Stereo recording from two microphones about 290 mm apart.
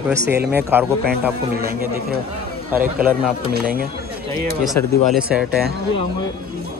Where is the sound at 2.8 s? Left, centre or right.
Right.